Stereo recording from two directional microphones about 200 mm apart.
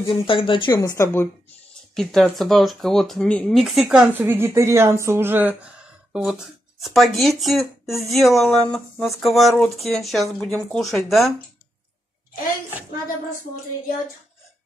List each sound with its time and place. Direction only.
0.3 s speech: 25° left (ahead or behind)
2.0 s speech: centre (ahead or behind)